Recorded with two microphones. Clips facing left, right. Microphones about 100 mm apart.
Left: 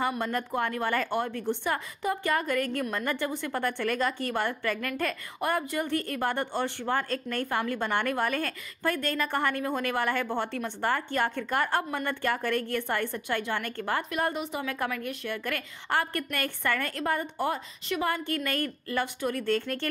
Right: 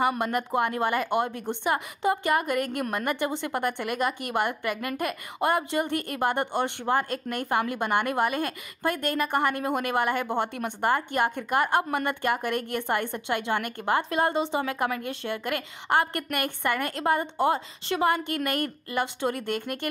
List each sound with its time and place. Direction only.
0.2 s a woman's voice: 20° right (ahead or behind)